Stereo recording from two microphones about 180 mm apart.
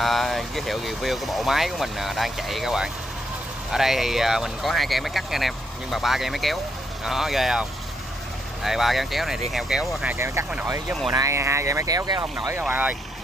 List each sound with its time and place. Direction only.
0.0 s speech: centre (ahead or behind)
8.6 s speech: centre (ahead or behind)
10.1 s speech: 15° right (ahead or behind)